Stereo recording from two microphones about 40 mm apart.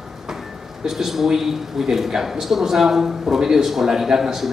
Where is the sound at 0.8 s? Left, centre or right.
Centre.